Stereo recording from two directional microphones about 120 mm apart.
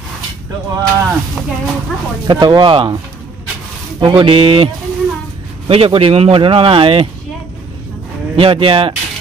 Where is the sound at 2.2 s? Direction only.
40° right (ahead or behind).